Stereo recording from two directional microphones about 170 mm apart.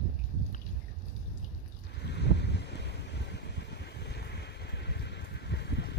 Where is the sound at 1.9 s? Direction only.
80° left.